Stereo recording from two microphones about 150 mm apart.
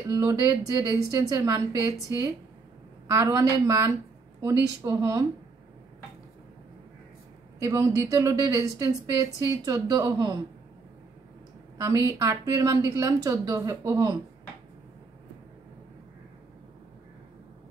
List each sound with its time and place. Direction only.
0.1 s a woman's voice: 20° right (ahead or behind)
7.5 s a woman's voice: 20° right (ahead or behind)
11.8 s a woman's voice: 20° right (ahead or behind)